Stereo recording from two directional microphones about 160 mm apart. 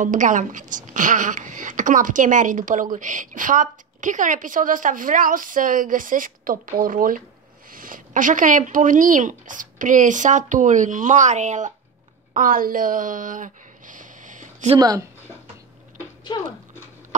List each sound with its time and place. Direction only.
0.0 s a woman's voice: 55° right (ahead or behind)
12.4 s speech: 60° right (ahead or behind)
14.8 s speech: 25° right (ahead or behind)
16.3 s speech: 30° left (ahead or behind)